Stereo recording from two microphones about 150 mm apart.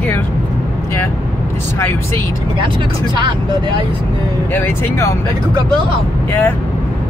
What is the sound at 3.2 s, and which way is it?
Speech, 30° right (ahead or behind).